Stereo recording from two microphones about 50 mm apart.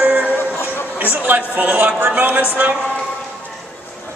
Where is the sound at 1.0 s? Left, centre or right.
Right.